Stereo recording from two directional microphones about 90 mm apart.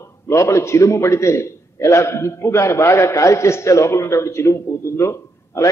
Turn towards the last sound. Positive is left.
turn(degrees=30)  # may be behind; listen again after turning